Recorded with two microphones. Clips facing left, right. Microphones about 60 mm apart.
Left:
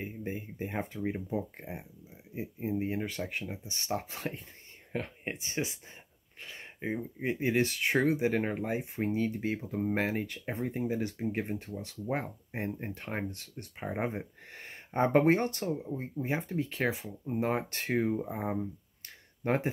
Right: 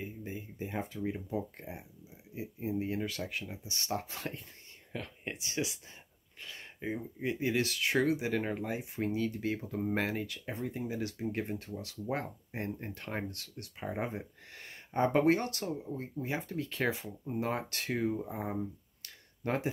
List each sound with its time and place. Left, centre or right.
0.0 s speech: left
3.9 s speech: centre
4.9 s speech: left
10.2 s speech: left
11.4 s speech: centre
15.6 s speech: centre
16.0 s speech: left
18.1 s speech: left
19.0 s a sound: left